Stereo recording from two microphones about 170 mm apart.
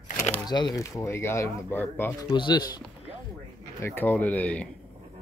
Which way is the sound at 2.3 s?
25° left (ahead or behind).